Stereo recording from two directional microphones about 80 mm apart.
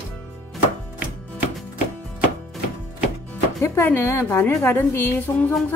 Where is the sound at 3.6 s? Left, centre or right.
Left.